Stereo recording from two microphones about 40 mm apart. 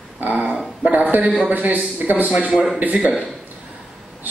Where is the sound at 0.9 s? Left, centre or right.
Right.